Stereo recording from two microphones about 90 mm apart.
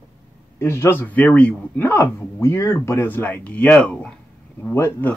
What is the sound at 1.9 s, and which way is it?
Speech, 30° left (ahead or behind).